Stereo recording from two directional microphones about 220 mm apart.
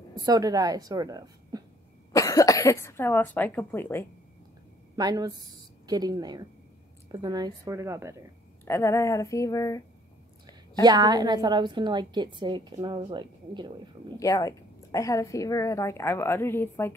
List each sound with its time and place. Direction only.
0.1 s speech: 15° right (ahead or behind)
2.1 s a woman's voice: 15° left (ahead or behind)
4.9 s a woman's voice: 15° right (ahead or behind)
8.6 s a woman's voice: 10° left (ahead or behind)
10.7 s a woman's voice: 20° right (ahead or behind)
14.1 s a woman's voice: 15° left (ahead or behind)